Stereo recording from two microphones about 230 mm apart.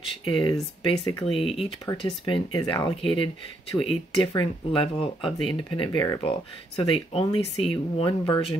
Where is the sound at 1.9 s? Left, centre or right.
Left.